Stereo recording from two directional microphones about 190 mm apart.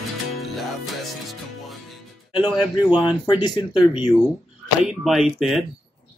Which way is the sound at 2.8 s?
25° left (ahead or behind).